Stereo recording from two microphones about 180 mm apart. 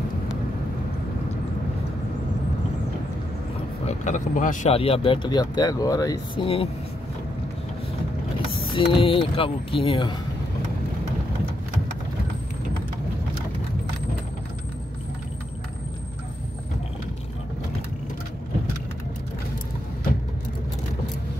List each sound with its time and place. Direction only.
3.8 s speech: 45° left (ahead or behind)
4.7 s speech: 30° left (ahead or behind)
8.7 s speech: 30° left (ahead or behind)